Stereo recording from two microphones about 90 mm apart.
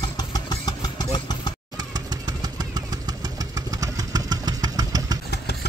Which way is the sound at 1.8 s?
50° right (ahead or behind).